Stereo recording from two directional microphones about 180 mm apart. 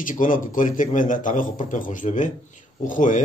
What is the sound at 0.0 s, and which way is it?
A man's voice, 50° left (ahead or behind).